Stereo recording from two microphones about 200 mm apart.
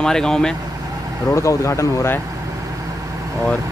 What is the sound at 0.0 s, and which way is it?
Speech, 5° left (ahead or behind).